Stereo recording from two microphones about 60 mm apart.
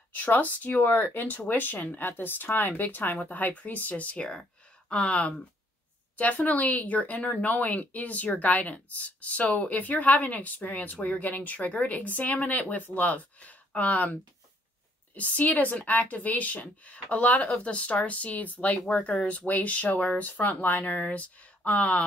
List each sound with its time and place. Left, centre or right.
0.1 s speech: left
15.1 s speech: left